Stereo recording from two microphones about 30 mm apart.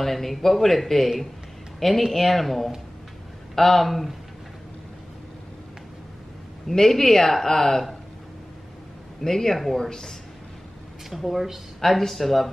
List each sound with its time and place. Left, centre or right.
0.0 s speech: centre
6.7 s speech: centre
9.2 s speech: centre
11.1 s speech: centre